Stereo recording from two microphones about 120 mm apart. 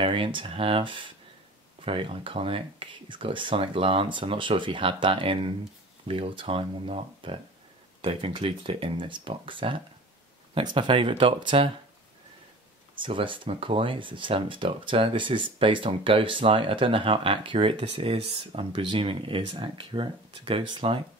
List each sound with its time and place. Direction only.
0.0 s speech: 45° right (ahead or behind)
12.9 s speech: 45° right (ahead or behind)